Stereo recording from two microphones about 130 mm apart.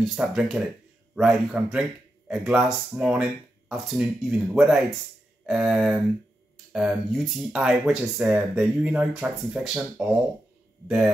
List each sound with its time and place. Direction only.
0.0 s speech: centre (ahead or behind)